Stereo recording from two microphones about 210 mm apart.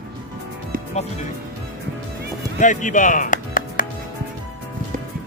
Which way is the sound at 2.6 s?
35° left (ahead or behind).